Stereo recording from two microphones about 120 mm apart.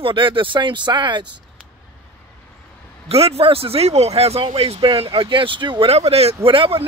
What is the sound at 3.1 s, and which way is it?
Speech, 50° right (ahead or behind).